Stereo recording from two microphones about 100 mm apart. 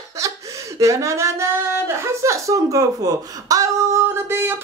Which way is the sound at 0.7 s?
30° right (ahead or behind).